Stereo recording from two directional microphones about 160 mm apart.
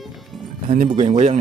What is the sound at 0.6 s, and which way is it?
Speech, 50° right (ahead or behind).